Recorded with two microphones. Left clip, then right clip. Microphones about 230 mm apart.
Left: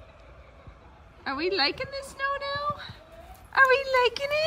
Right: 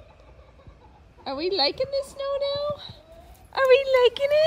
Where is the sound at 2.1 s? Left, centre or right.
Left.